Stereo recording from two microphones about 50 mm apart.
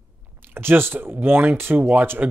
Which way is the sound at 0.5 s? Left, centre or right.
Right.